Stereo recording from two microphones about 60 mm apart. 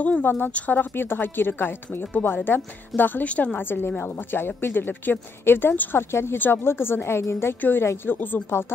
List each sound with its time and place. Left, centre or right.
0.2 s speech: left
3.3 s a woman's voice: left
3.5 s speech: left
8.1 s speech: left
8.5 s speech: left